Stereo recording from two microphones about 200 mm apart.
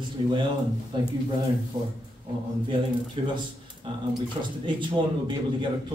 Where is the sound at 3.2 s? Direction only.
25° right (ahead or behind).